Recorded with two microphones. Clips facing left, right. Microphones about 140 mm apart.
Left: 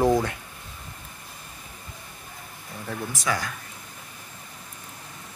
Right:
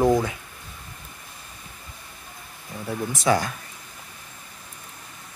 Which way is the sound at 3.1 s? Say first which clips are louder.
Right 8 dB; 30° right (ahead or behind).